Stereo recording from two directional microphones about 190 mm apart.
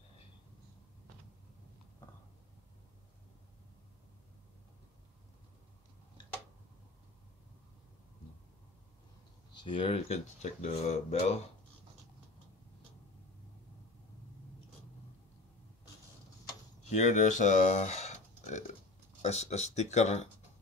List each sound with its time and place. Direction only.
9.6 s speech: 25° left (ahead or behind)
16.9 s speech: 40° left (ahead or behind)